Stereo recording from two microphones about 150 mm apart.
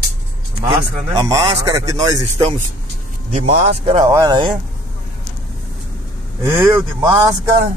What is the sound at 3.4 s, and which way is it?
Speech, 50° right (ahead or behind).